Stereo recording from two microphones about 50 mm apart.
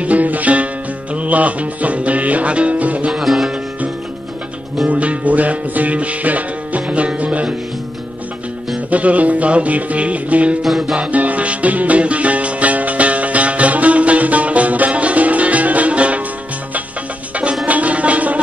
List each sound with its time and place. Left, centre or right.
0.0 s music: right
3.1 s music: centre
4.8 s music: right
8.9 s music: right
10.6 s music: centre
11.0 s music: right
17.6 s music: right